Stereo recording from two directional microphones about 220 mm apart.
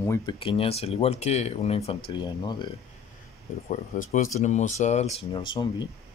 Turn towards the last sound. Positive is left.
turn(degrees=20)  # may be behind; listen again after turning